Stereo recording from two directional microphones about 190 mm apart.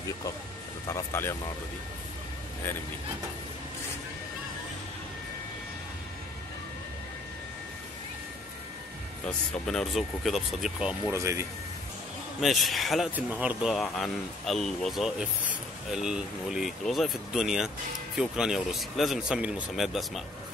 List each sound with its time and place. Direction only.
0.8 s speech: 15° left (ahead or behind)
9.2 s speech: 5° left (ahead or behind)
11.1 s a man's voice: 15° right (ahead or behind)
12.4 s speech: centre (ahead or behind)